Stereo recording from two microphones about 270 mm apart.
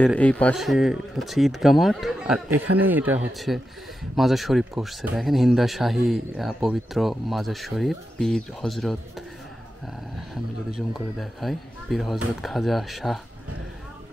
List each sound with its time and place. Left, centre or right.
0.0 s speech: centre
10.3 s speech: centre